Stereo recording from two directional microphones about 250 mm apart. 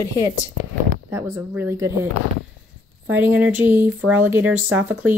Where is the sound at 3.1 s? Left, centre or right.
Centre.